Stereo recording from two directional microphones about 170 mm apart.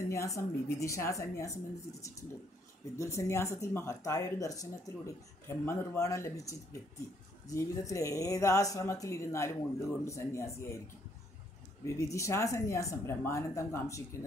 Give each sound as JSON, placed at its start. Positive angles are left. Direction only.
{"t": 0.1, "sound": "speech", "side_deg": 20}
{"t": 11.8, "sound": "speech", "side_deg": 15}